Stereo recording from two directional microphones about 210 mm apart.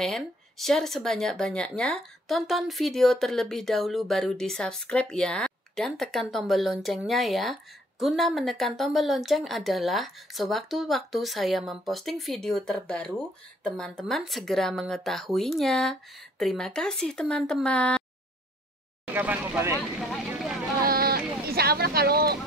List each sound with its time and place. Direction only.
0.0 s speech: centre (ahead or behind)
19.1 s speech: 10° right (ahead or behind)
20.0 s vehicle: centre (ahead or behind)
20.8 s vehicle: 45° right (ahead or behind)